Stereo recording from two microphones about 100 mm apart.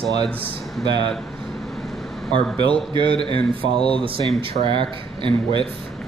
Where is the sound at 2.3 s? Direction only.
50° right (ahead or behind).